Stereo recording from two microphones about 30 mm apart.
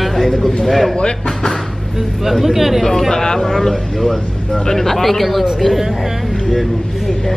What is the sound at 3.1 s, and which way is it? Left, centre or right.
Speech, centre.